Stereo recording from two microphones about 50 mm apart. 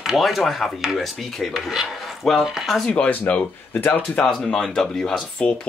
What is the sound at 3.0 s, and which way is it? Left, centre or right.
Speech, left.